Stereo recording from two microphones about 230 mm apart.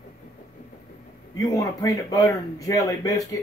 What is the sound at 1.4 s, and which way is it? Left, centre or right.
A man's voice, centre.